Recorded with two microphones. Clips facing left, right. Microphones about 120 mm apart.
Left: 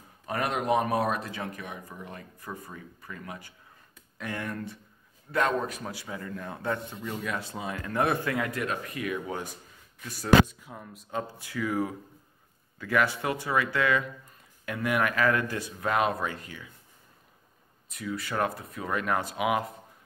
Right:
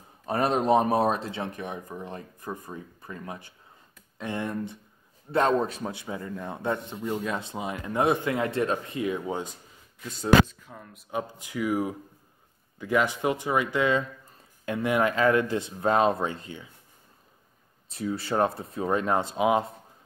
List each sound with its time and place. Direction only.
0.3 s speech: 30° right (ahead or behind)
10.4 s speech: 10° left (ahead or behind)
11.1 s speech: 15° right (ahead or behind)
17.8 s speech: 30° right (ahead or behind)